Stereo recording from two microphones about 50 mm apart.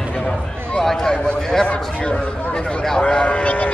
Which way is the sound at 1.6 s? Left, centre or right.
Left.